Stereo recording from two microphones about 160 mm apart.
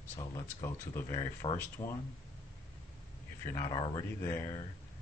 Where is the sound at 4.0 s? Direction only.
20° left (ahead or behind).